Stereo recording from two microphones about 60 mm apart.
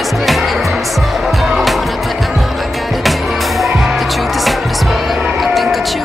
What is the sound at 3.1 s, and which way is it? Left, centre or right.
Music, centre.